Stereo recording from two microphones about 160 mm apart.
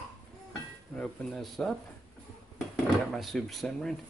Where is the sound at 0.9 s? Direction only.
5° left (ahead or behind).